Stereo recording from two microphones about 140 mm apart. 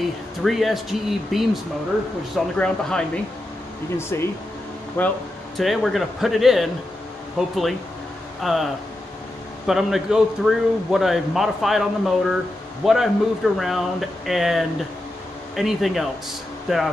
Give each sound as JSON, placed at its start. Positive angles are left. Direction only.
{"t": 0.4, "sound": "a man's voice", "side_deg": 0}
{"t": 4.1, "sound": "speech", "side_deg": 20}
{"t": 5.6, "sound": "a man's voice", "side_deg": 0}
{"t": 9.7, "sound": "a man's voice", "side_deg": 0}